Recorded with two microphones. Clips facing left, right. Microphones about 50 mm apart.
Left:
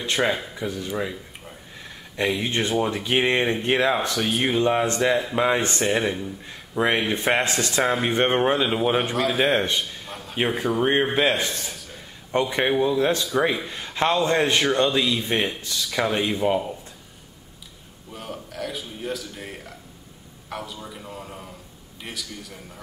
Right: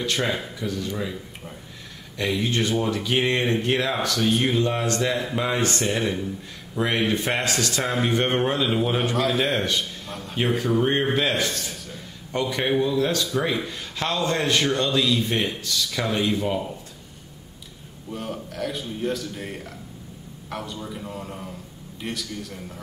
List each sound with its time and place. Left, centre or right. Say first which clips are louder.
0.0 s a man's voice: left 2 dB; centre
2.1 s a man's voice: left 1 dB; centre
9.1 s a man's voice: left 2 dB; centre
11.4 s a sound: right 1 dB; centre
12.3 s a man's voice: left 2 dB; left
13.7 s a man's voice: left 5 dB; left
18.1 s a man's voice: right 3 dB; centre